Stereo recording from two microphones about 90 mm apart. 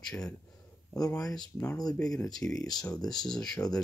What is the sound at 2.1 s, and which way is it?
Speech, 5° left (ahead or behind).